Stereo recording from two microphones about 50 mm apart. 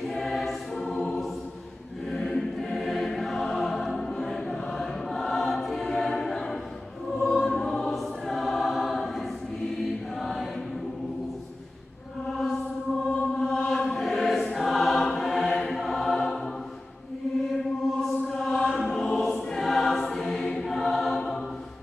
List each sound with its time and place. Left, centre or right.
0.1 s choir: centre
2.0 s music: centre
7.5 s choir: centre
10.1 s chant: centre
12.3 s music: centre
13.1 s music: left
13.5 s choir: centre
15.4 s chant: centre
15.7 s music: centre
17.9 s choir: centre